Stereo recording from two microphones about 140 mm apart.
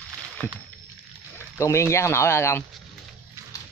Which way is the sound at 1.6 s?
20° left (ahead or behind).